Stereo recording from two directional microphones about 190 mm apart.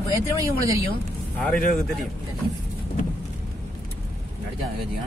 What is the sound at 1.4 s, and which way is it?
Speech, 5° left (ahead or behind).